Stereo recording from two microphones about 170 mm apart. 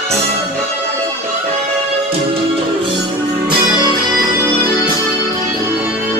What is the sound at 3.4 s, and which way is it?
Music, 25° right (ahead or behind).